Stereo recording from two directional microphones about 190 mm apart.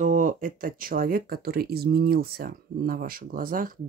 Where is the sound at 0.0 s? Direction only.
45° right (ahead or behind).